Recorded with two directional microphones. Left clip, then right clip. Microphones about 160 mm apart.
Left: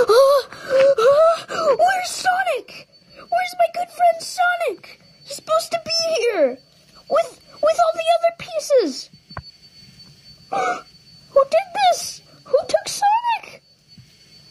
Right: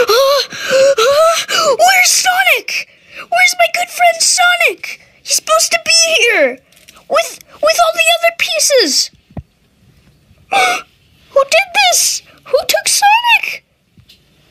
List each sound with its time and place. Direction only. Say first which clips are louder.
0.0 s wail: right 3 dB; 20° right (ahead or behind)
5.5 s a child's voice: right 8 dB; 40° right (ahead or behind)
10.5 s a child's voice: right 10 dB; 35° right (ahead or behind)